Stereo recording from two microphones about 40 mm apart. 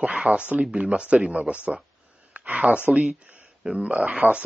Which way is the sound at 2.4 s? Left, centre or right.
Right.